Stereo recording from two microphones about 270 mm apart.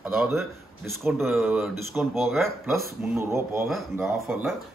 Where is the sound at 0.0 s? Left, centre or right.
Centre.